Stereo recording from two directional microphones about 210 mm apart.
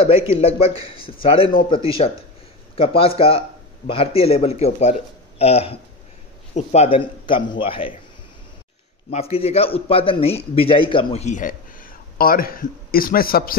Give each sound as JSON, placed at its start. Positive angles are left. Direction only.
{"t": 0.0, "sound": "a man's voice", "side_deg": 30}
{"t": 9.1, "sound": "a man's voice", "side_deg": 30}